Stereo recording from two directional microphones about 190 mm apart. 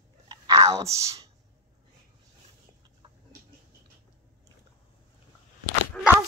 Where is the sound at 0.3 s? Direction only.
15° right (ahead or behind).